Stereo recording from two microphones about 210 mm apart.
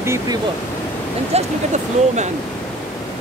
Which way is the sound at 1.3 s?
30° right (ahead or behind).